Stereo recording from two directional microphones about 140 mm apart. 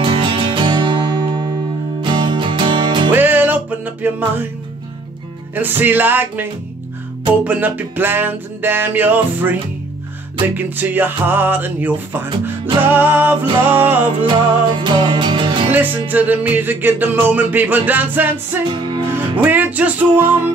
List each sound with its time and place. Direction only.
0.0 s music: 40° right (ahead or behind)
3.1 s music: 15° right (ahead or behind)
5.5 s music: 15° right (ahead or behind)
14.2 s music: 35° right (ahead or behind)
15.7 s music: 15° right (ahead or behind)
18.7 s music: 35° right (ahead or behind)
19.1 s music: 10° right (ahead or behind)